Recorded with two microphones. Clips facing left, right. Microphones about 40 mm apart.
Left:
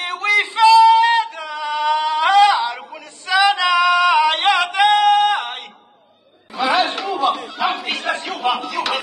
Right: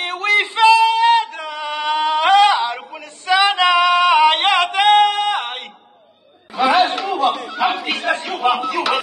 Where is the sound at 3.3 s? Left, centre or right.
Right.